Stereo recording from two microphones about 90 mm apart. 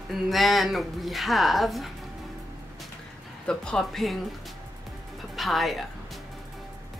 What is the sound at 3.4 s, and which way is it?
Speech, 10° left (ahead or behind).